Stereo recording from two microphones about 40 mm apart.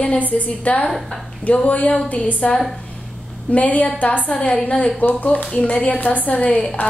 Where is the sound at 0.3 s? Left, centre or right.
Left.